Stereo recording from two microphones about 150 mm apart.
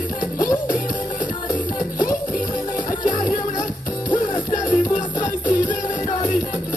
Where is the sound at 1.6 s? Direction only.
25° left (ahead or behind).